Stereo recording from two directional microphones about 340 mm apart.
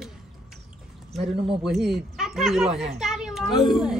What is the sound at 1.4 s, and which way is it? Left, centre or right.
A child's voice, centre.